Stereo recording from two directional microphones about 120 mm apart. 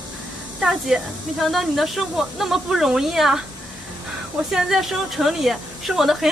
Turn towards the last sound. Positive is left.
turn(degrees=0)  # may be behind; listen again after turning